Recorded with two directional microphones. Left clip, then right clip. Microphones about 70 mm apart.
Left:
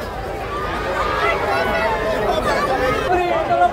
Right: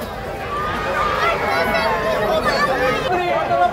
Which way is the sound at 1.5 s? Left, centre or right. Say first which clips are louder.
Right 1 dB; right.